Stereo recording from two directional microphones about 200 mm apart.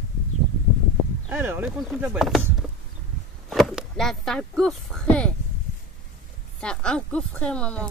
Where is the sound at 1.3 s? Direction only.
10° right (ahead or behind).